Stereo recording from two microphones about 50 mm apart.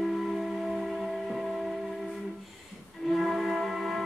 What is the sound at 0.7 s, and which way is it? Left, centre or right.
Music, centre.